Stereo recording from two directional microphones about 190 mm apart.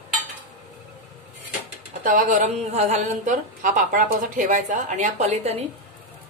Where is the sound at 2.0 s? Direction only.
45° right (ahead or behind).